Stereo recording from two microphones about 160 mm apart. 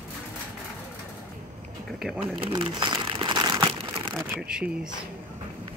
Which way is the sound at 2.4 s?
30° right (ahead or behind).